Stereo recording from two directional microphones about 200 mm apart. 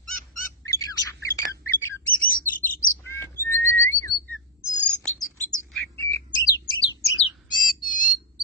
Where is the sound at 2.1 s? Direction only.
45° left (ahead or behind).